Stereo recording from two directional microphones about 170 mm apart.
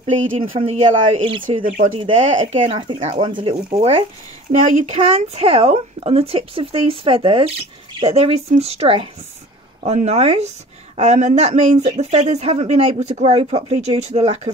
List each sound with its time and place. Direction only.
0.4 s speech: 30° right (ahead or behind)
1.6 s speech: 50° right (ahead or behind)
2.3 s speech: 30° right (ahead or behind)